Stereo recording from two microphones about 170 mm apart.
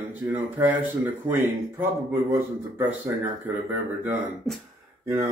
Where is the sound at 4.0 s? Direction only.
10° right (ahead or behind).